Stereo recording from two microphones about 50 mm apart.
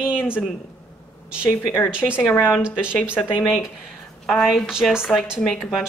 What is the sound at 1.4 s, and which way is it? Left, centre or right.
Speech, left.